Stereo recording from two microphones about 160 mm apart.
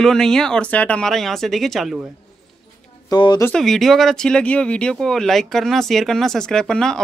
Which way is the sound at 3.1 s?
25° left (ahead or behind).